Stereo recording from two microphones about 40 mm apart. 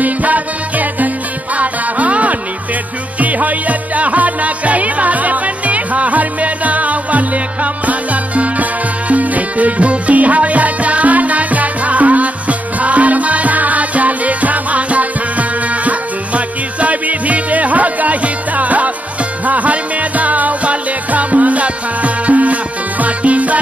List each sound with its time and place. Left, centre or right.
0.0 s music: right